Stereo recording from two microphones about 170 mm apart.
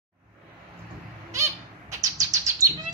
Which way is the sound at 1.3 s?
15° right (ahead or behind).